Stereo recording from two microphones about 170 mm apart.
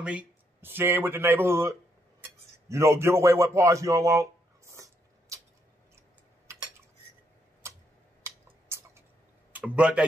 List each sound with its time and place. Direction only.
0.0 s a man's voice: 5° right (ahead or behind)
7.6 s tick-tock: 15° right (ahead or behind)
8.2 s a sound: 15° right (ahead or behind)
9.5 s speech: 5° right (ahead or behind)